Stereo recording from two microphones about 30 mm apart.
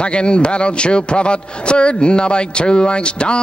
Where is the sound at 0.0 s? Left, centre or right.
Left.